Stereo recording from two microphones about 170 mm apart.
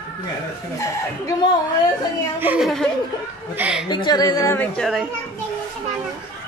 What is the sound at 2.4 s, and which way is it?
Speech, 5° right (ahead or behind).